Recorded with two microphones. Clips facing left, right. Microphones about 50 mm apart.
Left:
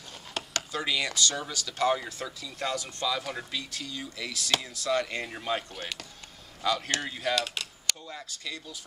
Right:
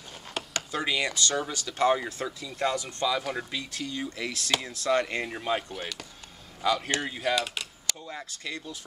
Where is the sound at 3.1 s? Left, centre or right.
Centre.